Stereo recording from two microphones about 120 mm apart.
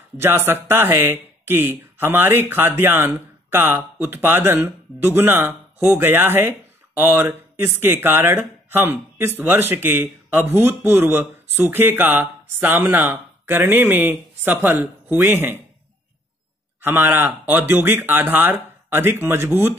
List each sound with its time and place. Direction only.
0.2 s speech: 20° right (ahead or behind)
16.8 s speech: 15° right (ahead or behind)